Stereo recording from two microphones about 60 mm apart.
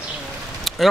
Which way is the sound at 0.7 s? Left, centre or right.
Centre.